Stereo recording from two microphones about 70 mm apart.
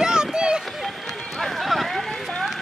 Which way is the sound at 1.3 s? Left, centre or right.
Centre.